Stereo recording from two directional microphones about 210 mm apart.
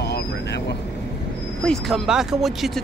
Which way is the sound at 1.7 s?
Centre (ahead or behind).